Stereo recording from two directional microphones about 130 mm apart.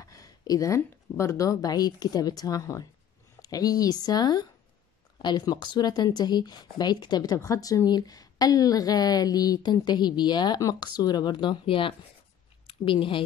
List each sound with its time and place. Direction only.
0.0 s a woman's voice: 25° left (ahead or behind); by 13.2 s 40° left (ahead or behind)